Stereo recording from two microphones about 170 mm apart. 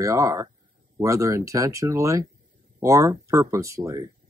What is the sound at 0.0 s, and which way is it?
Speech, 20° right (ahead or behind).